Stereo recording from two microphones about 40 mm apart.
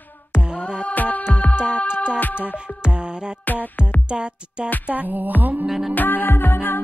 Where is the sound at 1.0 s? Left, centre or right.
Left.